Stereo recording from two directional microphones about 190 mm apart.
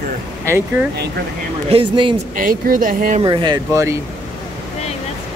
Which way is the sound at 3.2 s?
25° right (ahead or behind).